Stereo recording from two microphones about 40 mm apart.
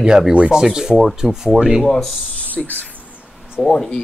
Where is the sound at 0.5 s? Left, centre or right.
Centre.